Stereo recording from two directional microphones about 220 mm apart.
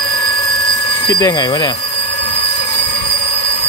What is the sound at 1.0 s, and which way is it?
Speech, 15° left (ahead or behind).